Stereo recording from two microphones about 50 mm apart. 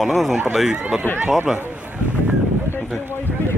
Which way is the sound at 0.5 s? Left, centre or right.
Centre.